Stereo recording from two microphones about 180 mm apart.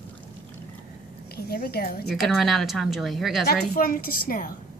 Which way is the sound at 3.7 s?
50° left (ahead or behind).